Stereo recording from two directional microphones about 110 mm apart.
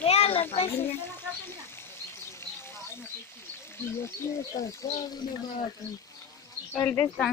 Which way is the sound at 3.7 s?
20° left (ahead or behind).